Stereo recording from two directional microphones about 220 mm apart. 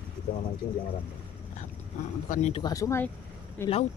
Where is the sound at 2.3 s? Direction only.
30° left (ahead or behind).